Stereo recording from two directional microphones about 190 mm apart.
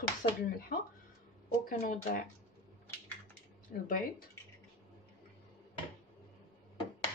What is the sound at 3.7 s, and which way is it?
Speech, 45° left (ahead or behind).